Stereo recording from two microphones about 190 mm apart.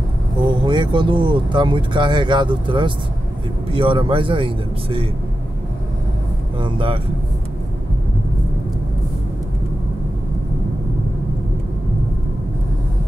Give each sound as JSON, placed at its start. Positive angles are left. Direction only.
{"t": 0.4, "sound": "speech", "side_deg": -25}
{"t": 6.6, "sound": "speech", "side_deg": -25}